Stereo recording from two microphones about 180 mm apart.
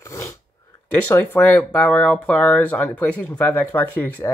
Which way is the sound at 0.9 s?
10° left (ahead or behind).